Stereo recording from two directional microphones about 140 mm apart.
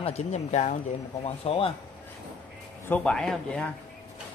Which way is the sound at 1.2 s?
45° left (ahead or behind).